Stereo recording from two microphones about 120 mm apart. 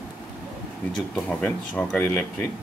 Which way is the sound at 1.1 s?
10° left (ahead or behind).